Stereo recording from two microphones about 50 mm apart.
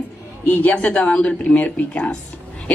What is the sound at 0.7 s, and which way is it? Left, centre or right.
A woman's voice, left.